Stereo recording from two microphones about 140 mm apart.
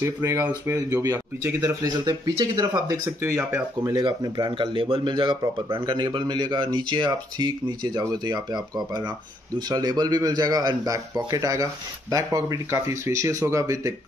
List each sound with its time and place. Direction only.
0.0 s a man's voice: 20° right (ahead or behind)
4.0 s a man's voice: 35° right (ahead or behind)